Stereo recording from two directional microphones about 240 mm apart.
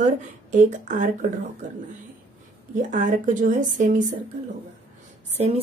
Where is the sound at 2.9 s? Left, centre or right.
Right.